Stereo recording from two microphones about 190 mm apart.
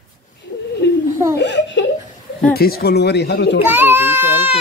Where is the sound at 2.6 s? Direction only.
55° left (ahead or behind).